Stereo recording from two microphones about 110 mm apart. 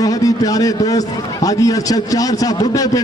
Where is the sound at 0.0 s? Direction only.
35° left (ahead or behind).